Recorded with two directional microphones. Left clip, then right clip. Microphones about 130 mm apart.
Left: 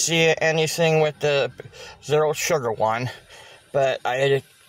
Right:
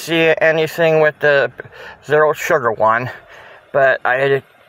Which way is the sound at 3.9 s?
10° left (ahead or behind).